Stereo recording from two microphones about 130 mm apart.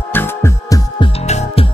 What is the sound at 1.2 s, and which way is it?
Music, 55° left (ahead or behind).